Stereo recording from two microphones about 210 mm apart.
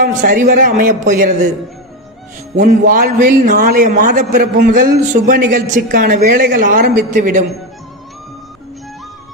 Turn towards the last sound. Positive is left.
turn(degrees=-40)  # may be behind; listen again after turning